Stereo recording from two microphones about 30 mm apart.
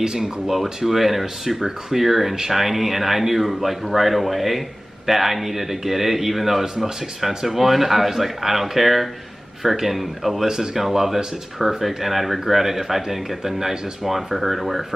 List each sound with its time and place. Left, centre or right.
0.0 s speech: right
0.6 s speech: centre
10.4 s speech: centre